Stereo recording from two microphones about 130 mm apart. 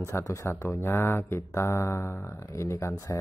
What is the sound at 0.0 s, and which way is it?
Speech, 25° left (ahead or behind).